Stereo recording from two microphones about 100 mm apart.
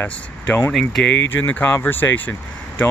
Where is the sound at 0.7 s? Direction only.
5° left (ahead or behind).